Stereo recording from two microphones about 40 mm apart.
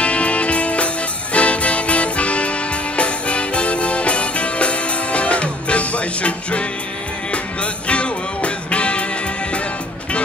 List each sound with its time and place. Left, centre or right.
0.0 s music: left
7.6 s music: left